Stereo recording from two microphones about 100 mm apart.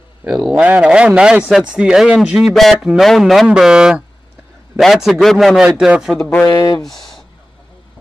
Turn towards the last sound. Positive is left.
turn(degrees=0)  # may be behind; listen again after turning